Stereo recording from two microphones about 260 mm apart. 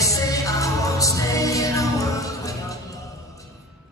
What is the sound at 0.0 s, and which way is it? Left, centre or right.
Music, centre.